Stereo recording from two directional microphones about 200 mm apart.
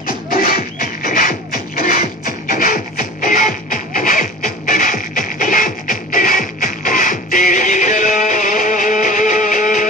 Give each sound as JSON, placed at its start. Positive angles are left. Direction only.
{"t": 0.0, "sound": "music", "side_deg": 45}